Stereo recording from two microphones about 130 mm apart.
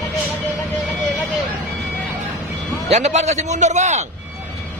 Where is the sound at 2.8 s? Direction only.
60° right (ahead or behind).